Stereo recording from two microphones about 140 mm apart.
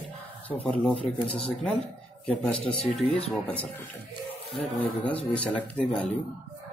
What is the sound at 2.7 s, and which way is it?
Speech, 35° left (ahead or behind).